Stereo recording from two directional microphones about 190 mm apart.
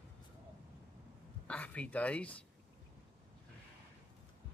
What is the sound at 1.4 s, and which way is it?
Speech, 5° left (ahead or behind).